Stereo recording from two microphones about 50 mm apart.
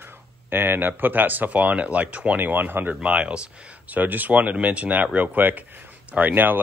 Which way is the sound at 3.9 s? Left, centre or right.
Right.